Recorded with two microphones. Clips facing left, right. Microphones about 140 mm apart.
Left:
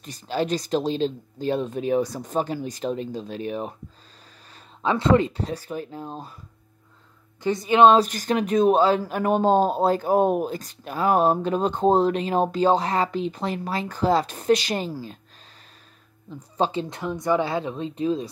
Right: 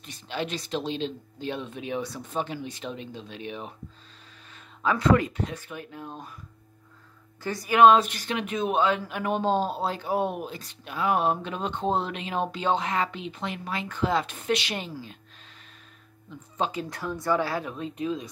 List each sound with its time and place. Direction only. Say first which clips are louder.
0.0 s speech: left 6 dB; 40° left (ahead or behind)
7.4 s speech: left 2 dB; 20° left (ahead or behind)
16.3 s speech: left 5 dB; 35° left (ahead or behind)
16.9 s speech: left 3 dB; 20° left (ahead or behind)